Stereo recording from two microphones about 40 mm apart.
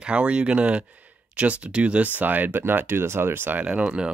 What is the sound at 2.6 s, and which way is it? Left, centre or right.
Speech, right.